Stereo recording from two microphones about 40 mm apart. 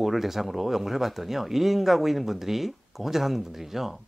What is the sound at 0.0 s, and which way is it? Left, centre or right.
Speech, centre.